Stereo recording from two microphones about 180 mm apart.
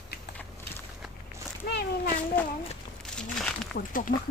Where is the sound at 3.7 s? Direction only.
50° left (ahead or behind).